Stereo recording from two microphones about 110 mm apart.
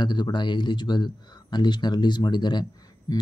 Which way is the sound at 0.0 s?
45° left (ahead or behind).